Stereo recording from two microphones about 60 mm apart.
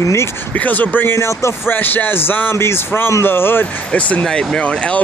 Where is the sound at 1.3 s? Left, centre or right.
Left.